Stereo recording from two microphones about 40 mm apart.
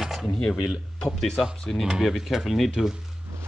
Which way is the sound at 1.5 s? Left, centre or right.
Centre.